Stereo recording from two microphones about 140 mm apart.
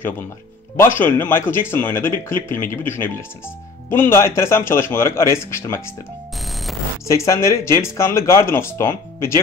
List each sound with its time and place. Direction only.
0.7 s speech: 15° left (ahead or behind)
6.4 s alarm clock: centre (ahead or behind)
7.1 s speech: 20° left (ahead or behind)